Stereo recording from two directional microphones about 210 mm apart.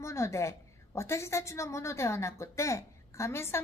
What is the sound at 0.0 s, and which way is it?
A woman's voice, 15° left (ahead or behind).